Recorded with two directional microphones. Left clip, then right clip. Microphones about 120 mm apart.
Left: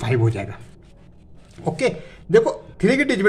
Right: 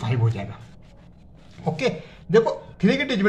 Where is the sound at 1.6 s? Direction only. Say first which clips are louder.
Left 3 dB; 35° left (ahead or behind).